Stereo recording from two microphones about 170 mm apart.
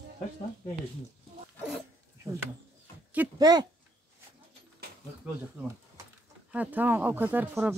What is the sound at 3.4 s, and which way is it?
Speech, 25° right (ahead or behind).